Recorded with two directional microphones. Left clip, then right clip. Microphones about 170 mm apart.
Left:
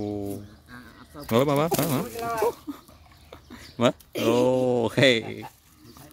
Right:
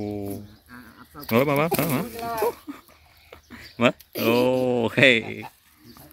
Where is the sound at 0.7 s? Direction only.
50° right (ahead or behind).